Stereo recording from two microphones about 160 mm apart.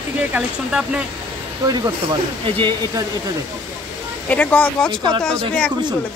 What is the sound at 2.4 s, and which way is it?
Speech, 30° right (ahead or behind).